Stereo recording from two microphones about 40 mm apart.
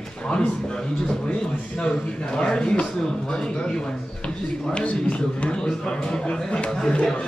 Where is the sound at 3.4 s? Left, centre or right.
Centre.